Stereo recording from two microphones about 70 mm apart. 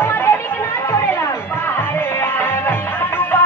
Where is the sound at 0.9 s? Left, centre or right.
Left.